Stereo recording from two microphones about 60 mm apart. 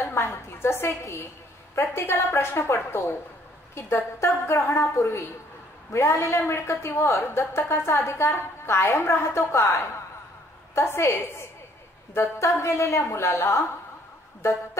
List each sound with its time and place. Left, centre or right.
0.0 s a woman's voice: left